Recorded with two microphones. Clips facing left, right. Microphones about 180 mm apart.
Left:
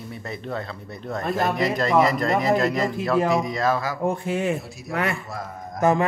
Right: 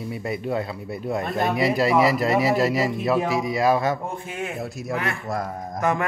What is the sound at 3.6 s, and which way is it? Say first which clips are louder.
Speech: right 3 dB; 20° right (ahead or behind).